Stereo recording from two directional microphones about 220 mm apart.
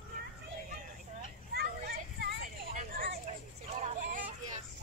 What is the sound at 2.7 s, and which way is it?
Vehicle, 35° right (ahead or behind).